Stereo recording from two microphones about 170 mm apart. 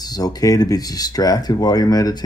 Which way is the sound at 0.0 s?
25° left (ahead or behind).